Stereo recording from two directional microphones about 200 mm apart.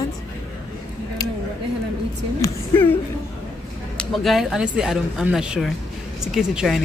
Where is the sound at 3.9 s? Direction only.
Centre (ahead or behind).